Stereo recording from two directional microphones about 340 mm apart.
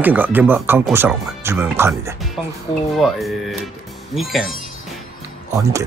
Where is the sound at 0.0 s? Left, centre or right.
Centre.